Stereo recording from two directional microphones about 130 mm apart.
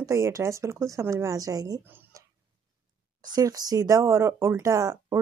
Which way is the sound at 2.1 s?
25° right (ahead or behind).